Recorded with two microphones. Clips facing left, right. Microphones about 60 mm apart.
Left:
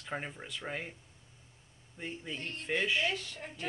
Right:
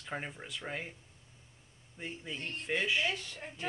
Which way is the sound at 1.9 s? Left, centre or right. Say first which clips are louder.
Left 1 dB; centre.